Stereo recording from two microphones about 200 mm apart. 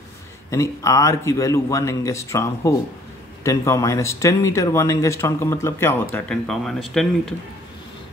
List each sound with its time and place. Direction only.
0.5 s speech: 15° left (ahead or behind)